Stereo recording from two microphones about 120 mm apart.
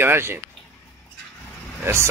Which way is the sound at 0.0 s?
20° right (ahead or behind).